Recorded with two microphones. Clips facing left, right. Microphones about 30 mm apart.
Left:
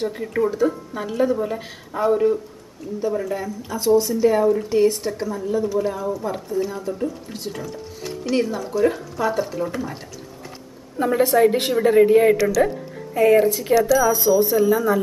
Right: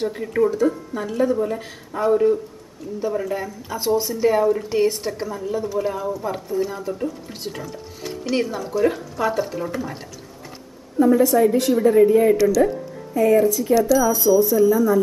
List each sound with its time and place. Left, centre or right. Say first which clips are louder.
0.0 s speech: right 2 dB; centre
11.0 s a woman's voice: right 1 dB; left
13.7 s speech: left 1 dB; centre
14.3 s speech: right 2 dB; left
14.6 s speech: right 2 dB; left